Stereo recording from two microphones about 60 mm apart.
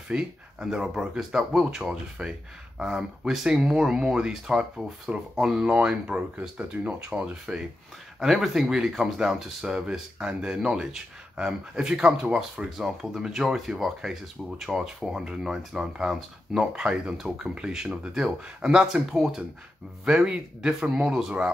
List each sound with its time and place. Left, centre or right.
0.6 s speech: centre
5.6 s speech: right
8.2 s speech: centre
12.7 s speech: centre